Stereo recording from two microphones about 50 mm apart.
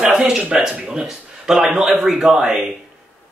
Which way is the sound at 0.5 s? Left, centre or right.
Centre.